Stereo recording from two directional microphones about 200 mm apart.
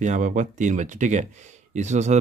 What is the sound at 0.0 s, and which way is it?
Speech, 35° right (ahead or behind).